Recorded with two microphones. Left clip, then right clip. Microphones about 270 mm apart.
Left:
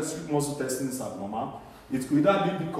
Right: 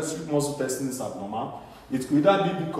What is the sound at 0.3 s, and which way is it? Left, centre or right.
A man's voice, centre.